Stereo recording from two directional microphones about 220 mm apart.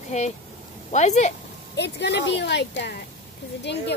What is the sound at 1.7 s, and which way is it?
Speech, 50° left (ahead or behind).